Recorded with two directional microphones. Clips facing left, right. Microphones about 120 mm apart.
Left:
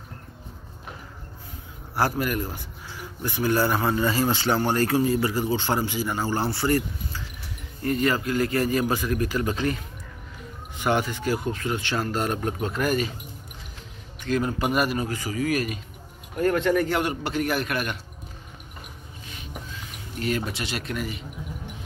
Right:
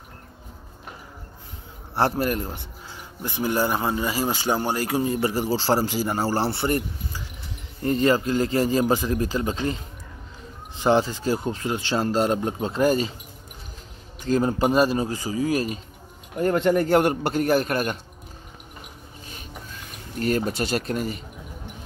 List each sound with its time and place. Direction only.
2.0 s speech: 30° right (ahead or behind)
10.8 s speech: 30° right (ahead or behind)
14.2 s a man's voice: 35° right (ahead or behind)
20.2 s a man's voice: 40° right (ahead or behind)